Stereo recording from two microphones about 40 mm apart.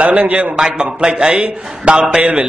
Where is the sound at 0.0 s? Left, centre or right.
Right.